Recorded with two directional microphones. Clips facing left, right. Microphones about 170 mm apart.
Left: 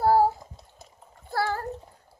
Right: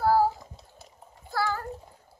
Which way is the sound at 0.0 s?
25° left (ahead or behind).